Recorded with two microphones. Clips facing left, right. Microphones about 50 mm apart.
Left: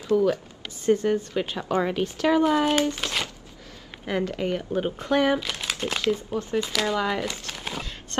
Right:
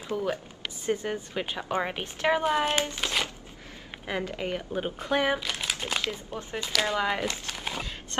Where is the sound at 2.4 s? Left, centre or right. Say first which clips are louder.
Left 4 dB; centre.